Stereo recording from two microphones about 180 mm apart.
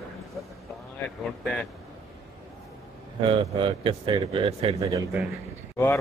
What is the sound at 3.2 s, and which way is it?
Speech, 30° right (ahead or behind).